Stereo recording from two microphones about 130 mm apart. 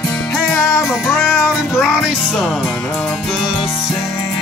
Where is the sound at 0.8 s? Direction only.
Centre (ahead or behind).